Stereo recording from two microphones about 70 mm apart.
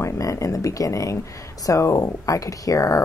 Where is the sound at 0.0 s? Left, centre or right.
Left.